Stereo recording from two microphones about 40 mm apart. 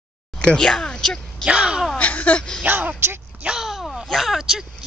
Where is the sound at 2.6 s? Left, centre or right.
Right.